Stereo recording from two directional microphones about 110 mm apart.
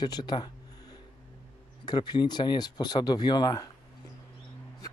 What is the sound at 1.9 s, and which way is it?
Speech, 45° left (ahead or behind).